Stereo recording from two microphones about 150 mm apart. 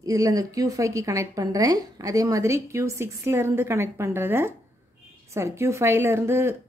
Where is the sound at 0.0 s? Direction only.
25° right (ahead or behind).